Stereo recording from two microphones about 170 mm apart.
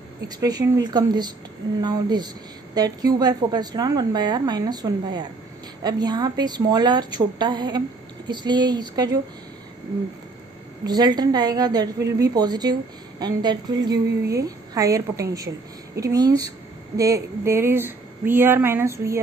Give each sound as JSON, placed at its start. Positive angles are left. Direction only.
{"t": 0.4, "sound": "a woman's voice", "side_deg": -20}
{"t": 10.9, "sound": "a woman's voice", "side_deg": -25}